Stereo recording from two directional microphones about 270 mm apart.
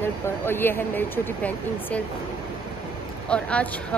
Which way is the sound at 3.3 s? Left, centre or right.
Centre.